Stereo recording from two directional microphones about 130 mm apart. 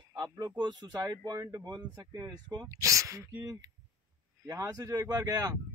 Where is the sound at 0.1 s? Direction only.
30° right (ahead or behind).